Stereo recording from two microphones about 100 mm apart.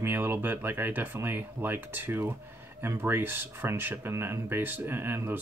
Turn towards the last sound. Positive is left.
turn(degrees=-20)  # may be behind; listen again after turning